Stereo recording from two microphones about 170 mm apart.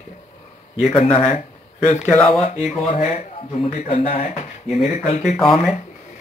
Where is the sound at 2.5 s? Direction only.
40° left (ahead or behind).